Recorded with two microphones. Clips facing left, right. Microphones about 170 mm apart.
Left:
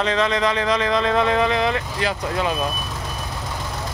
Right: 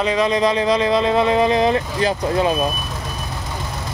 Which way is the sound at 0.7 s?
30° right (ahead or behind).